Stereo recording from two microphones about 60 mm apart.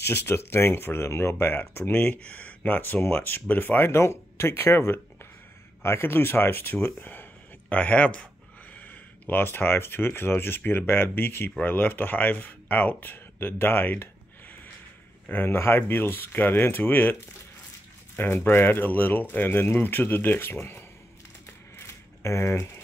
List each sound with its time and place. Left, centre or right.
0.0 s speech: left
2.8 s speech: left
3.9 s speech: left
15.3 s speech: left
21.7 s coin: left